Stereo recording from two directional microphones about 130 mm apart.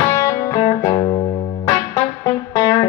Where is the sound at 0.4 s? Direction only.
25° left (ahead or behind).